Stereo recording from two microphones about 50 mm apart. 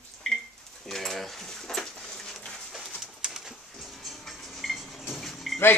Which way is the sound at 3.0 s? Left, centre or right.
Centre.